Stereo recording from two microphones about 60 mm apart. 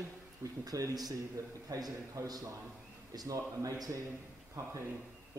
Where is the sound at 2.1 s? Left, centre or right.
Right.